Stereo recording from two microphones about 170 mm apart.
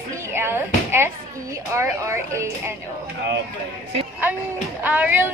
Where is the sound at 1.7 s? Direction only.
15° right (ahead or behind).